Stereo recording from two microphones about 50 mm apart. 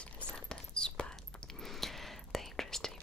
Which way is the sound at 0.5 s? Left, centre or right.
Centre.